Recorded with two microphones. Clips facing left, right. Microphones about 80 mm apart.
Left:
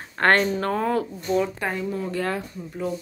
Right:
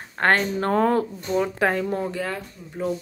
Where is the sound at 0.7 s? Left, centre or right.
Right.